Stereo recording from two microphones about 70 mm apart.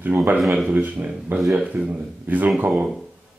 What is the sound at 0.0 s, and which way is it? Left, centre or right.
Speech, right.